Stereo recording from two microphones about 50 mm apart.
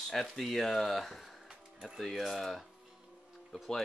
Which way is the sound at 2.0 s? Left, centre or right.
Centre.